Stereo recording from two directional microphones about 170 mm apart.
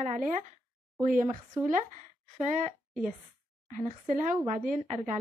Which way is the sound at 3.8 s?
45° right (ahead or behind).